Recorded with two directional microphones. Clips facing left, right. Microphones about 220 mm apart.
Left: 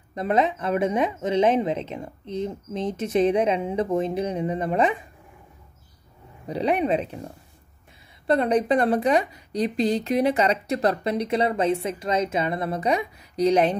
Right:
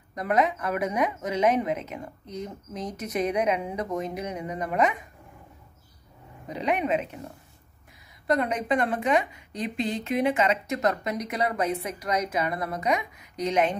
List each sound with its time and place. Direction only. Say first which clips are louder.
0.1 s speech: left 2 dB; 25° left (ahead or behind)
6.4 s a woman's voice: left 4 dB; 35° left (ahead or behind)
8.3 s a woman's voice: left 5 dB; 30° left (ahead or behind)